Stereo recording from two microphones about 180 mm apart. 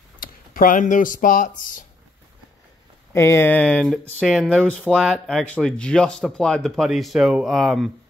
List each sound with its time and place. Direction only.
0.2 s speech: 50° left (ahead or behind)
3.1 s speech: 15° left (ahead or behind); by 4.6 s 5° right (ahead or behind)
4.6 s speech: 5° left (ahead or behind)